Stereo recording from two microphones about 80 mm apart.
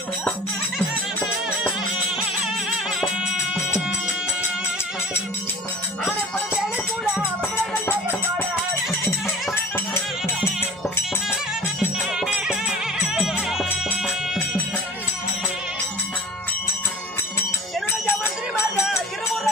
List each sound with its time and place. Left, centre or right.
6.0 s music: centre
8.8 s music: centre
12.1 s music: centre
18.0 s a sound: left
18.9 s run: centre